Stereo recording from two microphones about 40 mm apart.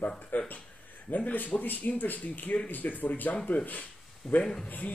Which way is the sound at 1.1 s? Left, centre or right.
Left.